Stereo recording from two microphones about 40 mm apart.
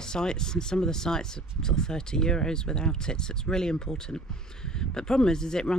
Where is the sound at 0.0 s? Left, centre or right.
Centre.